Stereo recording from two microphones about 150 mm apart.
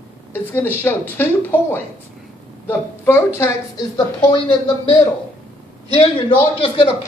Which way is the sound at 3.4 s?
25° left (ahead or behind).